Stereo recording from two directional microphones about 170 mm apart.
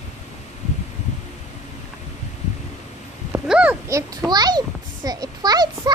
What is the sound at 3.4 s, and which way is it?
Speech, 5° right (ahead or behind).